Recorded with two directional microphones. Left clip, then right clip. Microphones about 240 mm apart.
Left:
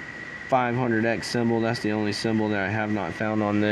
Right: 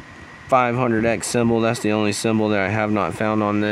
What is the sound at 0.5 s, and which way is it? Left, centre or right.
Speech, right.